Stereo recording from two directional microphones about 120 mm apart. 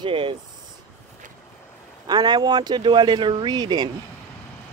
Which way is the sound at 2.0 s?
35° right (ahead or behind).